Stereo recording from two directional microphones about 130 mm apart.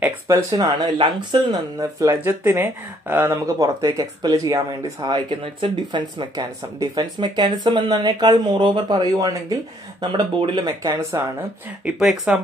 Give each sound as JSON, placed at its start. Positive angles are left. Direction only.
{"t": 0.3, "sound": "speech", "side_deg": -30}
{"t": 1.8, "sound": "speech", "side_deg": -25}
{"t": 11.8, "sound": "speech", "side_deg": -5}